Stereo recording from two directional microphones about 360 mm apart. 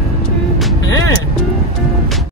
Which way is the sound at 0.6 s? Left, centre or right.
Centre.